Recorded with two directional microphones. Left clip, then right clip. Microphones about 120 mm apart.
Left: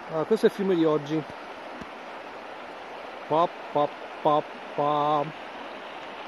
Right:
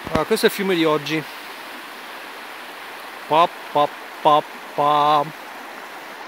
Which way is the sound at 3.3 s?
90° right.